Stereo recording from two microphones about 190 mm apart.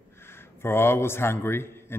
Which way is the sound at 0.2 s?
10° left (ahead or behind).